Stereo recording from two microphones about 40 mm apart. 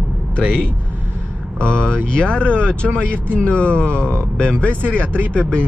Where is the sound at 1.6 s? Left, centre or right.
Left.